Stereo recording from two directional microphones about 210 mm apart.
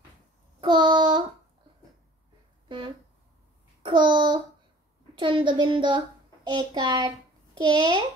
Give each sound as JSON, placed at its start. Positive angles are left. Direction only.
{"t": 0.6, "sound": "child singing", "side_deg": -20}
{"t": 3.8, "sound": "child singing", "side_deg": -20}
{"t": 5.1, "sound": "a child's voice", "side_deg": -25}
{"t": 7.5, "sound": "child singing", "side_deg": -20}